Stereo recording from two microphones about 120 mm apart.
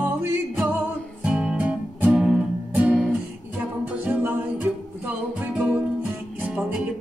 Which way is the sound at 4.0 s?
15° right (ahead or behind).